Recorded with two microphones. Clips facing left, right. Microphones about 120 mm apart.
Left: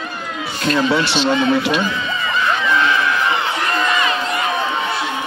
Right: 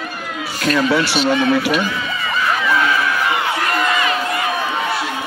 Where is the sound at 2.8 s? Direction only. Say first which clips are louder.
Even; 25° left (ahead or behind).